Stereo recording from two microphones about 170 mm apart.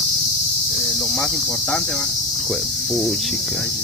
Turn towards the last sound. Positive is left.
turn(degrees=0)  # may be behind; listen again after turning